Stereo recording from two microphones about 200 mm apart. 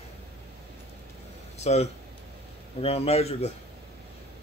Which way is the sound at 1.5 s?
35° left (ahead or behind).